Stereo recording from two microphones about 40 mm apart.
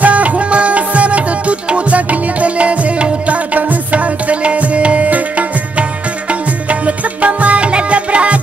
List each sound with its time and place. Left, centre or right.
0.0 s music: right